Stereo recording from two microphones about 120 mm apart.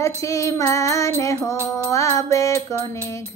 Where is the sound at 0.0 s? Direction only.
25° left (ahead or behind).